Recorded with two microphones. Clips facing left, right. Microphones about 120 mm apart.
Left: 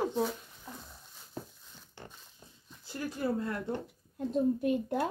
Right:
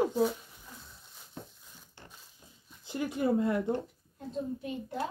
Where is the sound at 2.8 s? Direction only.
20° right (ahead or behind).